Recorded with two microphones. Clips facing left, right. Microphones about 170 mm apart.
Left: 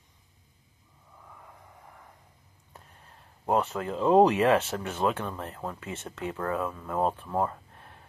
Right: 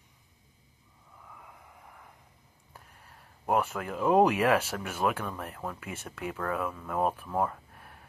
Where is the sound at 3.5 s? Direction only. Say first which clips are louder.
Left 2 dB; 25° left (ahead or behind).